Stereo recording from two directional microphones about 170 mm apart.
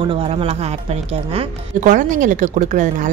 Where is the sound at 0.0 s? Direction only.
30° right (ahead or behind).